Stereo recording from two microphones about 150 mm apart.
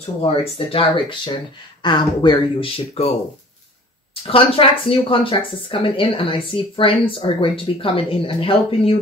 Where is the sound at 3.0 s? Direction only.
45° left (ahead or behind).